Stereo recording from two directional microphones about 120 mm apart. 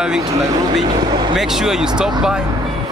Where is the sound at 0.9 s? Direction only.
40° right (ahead or behind).